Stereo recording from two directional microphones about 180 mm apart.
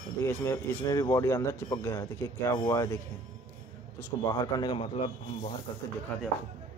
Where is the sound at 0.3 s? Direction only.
15° left (ahead or behind).